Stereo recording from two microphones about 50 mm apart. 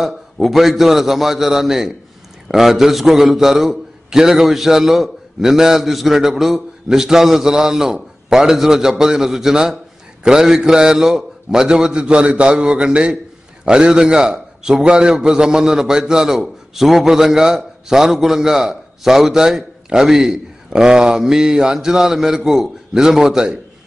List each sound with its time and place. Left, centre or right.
0.0 s a man's voice: centre